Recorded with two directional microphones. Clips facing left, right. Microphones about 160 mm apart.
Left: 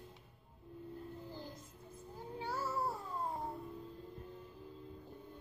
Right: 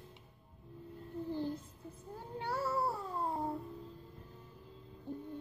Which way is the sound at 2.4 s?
65° right (ahead or behind).